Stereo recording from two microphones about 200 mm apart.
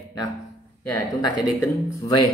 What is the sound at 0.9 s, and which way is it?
Speech, 20° left (ahead or behind).